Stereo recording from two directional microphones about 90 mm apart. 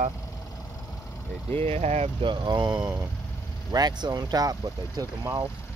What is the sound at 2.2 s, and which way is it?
Speech, 60° right (ahead or behind).